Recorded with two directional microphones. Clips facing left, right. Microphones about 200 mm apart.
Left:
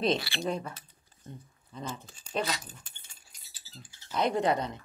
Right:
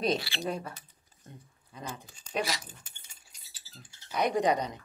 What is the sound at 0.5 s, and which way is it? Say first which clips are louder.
Speech: left 2 dB; 5° right (ahead or behind).